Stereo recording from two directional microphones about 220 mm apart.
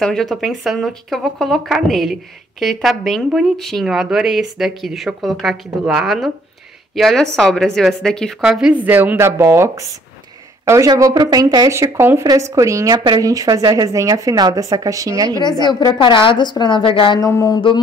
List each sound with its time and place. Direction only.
0.0 s a woman's voice: centre (ahead or behind); by 15.3 s 15° right (ahead or behind)
15.6 s a woman's voice: 20° left (ahead or behind)